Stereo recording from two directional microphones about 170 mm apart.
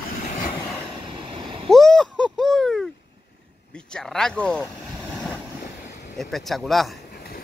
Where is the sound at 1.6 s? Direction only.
Centre (ahead or behind).